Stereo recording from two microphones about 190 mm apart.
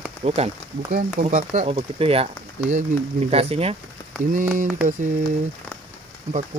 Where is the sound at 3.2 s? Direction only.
30° right (ahead or behind).